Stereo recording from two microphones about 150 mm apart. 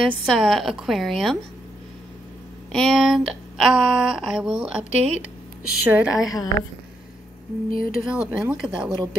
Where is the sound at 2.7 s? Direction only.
Centre (ahead or behind).